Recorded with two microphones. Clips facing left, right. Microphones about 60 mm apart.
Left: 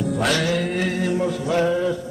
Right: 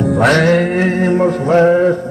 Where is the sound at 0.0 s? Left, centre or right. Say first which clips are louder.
Right 10 dB; right.